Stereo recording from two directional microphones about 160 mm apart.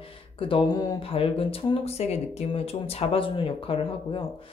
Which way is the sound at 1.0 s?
35° left (ahead or behind).